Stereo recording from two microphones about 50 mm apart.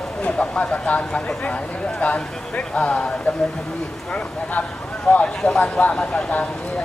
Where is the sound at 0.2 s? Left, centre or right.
Centre.